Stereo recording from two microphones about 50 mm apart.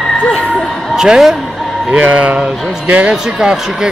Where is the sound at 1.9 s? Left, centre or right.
Right.